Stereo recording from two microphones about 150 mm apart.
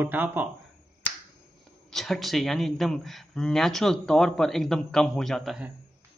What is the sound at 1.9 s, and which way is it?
Speech, centre (ahead or behind).